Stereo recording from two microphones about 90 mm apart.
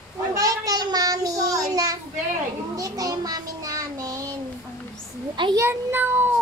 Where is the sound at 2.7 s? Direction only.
40° right (ahead or behind).